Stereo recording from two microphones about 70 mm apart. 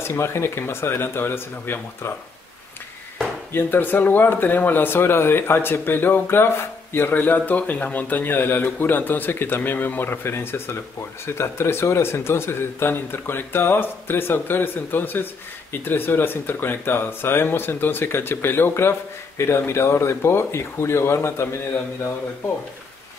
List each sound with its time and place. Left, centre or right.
0.0 s a man's voice: left
3.5 s a man's voice: left